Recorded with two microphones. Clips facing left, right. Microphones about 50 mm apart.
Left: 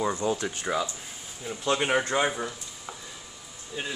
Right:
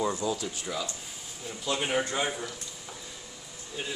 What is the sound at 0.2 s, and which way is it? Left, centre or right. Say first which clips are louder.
Speech: left 3 dB; left.